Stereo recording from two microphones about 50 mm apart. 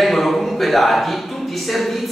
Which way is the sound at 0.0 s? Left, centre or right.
Centre.